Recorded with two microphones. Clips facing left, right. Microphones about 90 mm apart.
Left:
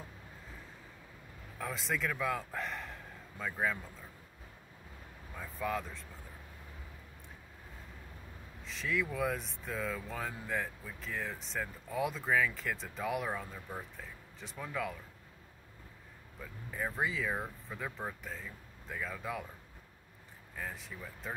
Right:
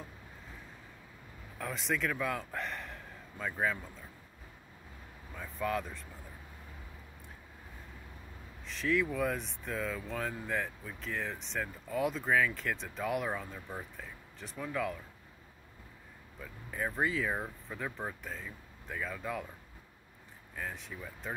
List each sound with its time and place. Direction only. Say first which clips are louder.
1.6 s a man's voice: right 2 dB; centre (ahead or behind)
5.3 s speech: right 2 dB; centre (ahead or behind)
8.6 s speech: right 4 dB; centre (ahead or behind)
16.7 s speech: right 2 dB; centre (ahead or behind)
20.5 s speech: right 2 dB; centre (ahead or behind)